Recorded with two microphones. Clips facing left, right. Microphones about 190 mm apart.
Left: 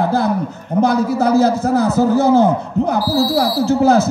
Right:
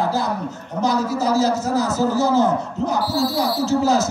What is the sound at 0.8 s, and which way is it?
A man's voice, 55° left (ahead or behind).